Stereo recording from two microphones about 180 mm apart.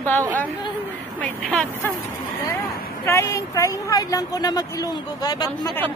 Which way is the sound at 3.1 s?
15° left (ahead or behind).